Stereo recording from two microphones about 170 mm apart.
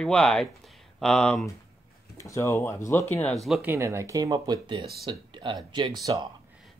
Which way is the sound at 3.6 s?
15° right (ahead or behind).